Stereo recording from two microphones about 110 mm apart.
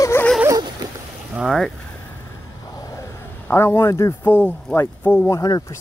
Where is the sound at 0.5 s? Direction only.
35° right (ahead or behind).